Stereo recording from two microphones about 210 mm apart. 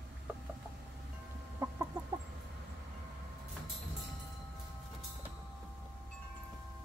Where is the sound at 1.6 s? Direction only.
15° right (ahead or behind).